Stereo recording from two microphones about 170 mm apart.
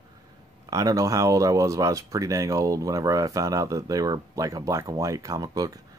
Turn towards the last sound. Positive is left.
turn(degrees=-20)  # may be behind; listen again after turning